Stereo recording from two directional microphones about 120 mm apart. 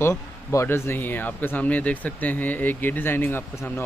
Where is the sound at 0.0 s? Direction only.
25° left (ahead or behind).